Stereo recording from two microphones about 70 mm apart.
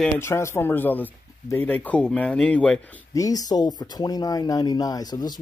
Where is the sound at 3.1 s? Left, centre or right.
Left.